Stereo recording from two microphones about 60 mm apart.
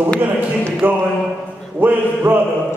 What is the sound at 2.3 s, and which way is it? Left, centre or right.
Speech, right.